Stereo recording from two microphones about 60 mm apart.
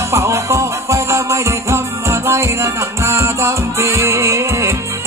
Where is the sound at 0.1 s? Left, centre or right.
Right.